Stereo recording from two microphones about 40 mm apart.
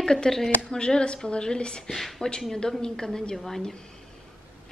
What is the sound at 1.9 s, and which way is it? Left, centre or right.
A woman's voice, centre.